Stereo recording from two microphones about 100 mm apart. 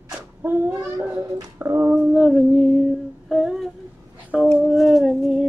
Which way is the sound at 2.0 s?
5° right (ahead or behind).